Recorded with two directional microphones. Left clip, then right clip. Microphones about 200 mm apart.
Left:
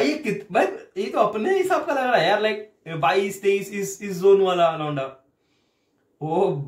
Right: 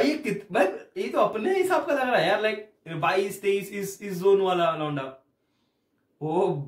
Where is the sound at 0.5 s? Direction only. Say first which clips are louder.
Left 2 dB; 5° left (ahead or behind).